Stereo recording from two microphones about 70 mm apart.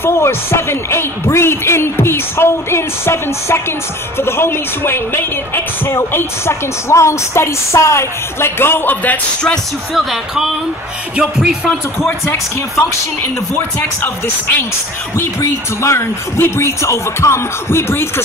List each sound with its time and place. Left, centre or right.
0.0 s a woman's voice: left
9.9 s speech: centre
15.8 s a woman's voice: left